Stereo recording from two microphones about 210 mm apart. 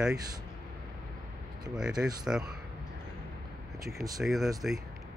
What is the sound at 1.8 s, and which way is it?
Speech, 5° right (ahead or behind).